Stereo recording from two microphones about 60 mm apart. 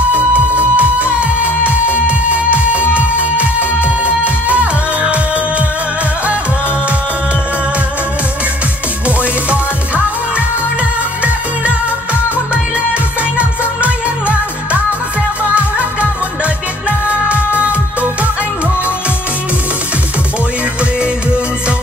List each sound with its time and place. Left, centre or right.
0.1 s music: right
4.0 s music: right
13.4 s music: right
17.1 s music: right